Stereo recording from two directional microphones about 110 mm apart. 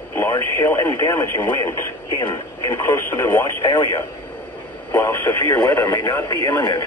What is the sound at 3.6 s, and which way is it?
Speech, 40° left (ahead or behind).